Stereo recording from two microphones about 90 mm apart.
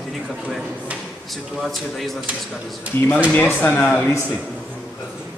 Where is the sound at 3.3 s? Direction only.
20° left (ahead or behind).